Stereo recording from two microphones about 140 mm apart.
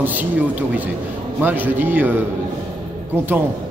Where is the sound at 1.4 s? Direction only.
15° right (ahead or behind).